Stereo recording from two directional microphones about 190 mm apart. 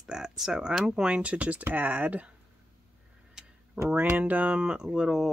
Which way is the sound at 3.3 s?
5° right (ahead or behind).